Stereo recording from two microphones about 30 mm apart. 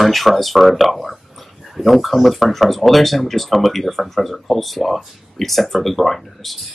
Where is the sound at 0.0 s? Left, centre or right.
Centre.